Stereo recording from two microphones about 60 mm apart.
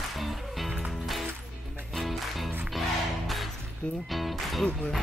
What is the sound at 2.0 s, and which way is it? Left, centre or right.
Music, centre.